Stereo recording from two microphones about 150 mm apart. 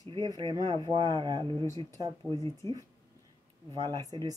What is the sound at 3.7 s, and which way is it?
Speech, 30° right (ahead or behind).